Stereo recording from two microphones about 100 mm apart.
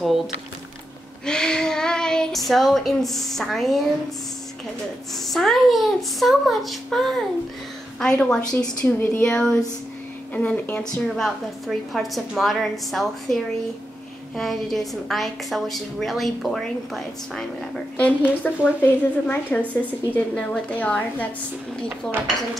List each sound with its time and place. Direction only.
1.2 s speech: 5° left (ahead or behind)
5.1 s a woman's voice: centre (ahead or behind)
17.9 s a woman's voice: 15° left (ahead or behind)